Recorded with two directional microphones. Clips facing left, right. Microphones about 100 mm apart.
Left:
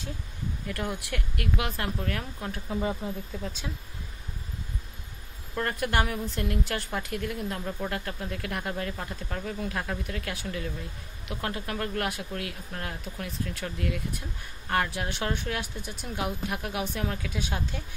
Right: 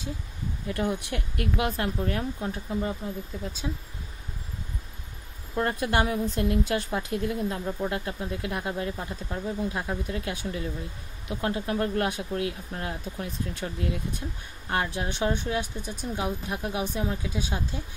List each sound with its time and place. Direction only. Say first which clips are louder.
0.7 s a woman's voice: right 5 dB; 25° right (ahead or behind)
2.7 s speech: left 2 dB; 5° left (ahead or behind)
5.6 s a woman's voice: right 2 dB; 25° right (ahead or behind)
15.7 s speech: right 4 dB; 15° left (ahead or behind)
16.6 s speech: right 4 dB; 20° right (ahead or behind)